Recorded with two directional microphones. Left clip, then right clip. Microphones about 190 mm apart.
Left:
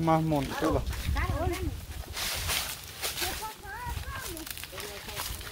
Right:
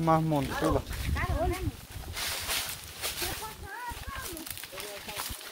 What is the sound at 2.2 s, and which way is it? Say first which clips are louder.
Boat: left 1 dB; 35° left (ahead or behind).